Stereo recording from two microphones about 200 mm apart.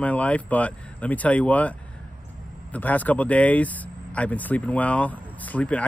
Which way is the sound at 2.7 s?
10° left (ahead or behind).